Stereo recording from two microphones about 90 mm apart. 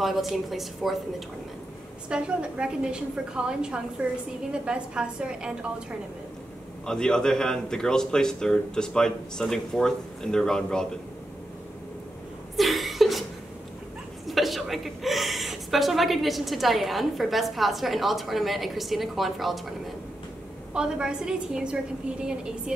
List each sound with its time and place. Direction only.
0.0 s a woman's voice: centre (ahead or behind)
2.0 s a woman's voice: 10° right (ahead or behind)
6.9 s a man's voice: 10° left (ahead or behind)
12.5 s chuckle: centre (ahead or behind)
14.2 s a woman's voice: centre (ahead or behind)
20.7 s a woman's voice: 10° right (ahead or behind)